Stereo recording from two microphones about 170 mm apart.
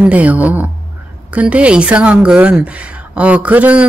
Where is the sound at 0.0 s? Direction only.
10° right (ahead or behind).